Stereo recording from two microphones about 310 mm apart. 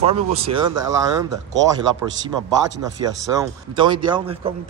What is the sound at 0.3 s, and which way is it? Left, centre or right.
A man's voice, centre.